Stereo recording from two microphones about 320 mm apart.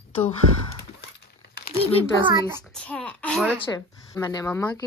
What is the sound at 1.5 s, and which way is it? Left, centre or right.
Crumpling, left.